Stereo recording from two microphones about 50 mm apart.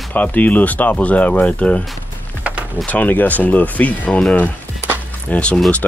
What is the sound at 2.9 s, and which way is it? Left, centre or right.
Speech, left.